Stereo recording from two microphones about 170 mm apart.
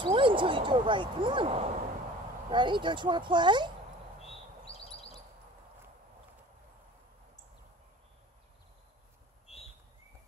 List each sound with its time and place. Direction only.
0.0 s speech: 30° right (ahead or behind)
4.2 s chirp: 35° left (ahead or behind)